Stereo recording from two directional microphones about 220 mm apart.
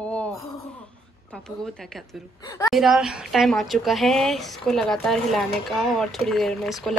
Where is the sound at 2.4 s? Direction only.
15° left (ahead or behind).